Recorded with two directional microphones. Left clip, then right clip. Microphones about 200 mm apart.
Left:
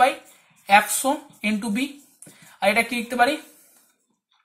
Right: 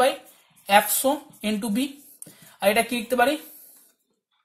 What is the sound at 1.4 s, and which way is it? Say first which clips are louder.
A man's voice: left 1 dB; 45° right (ahead or behind).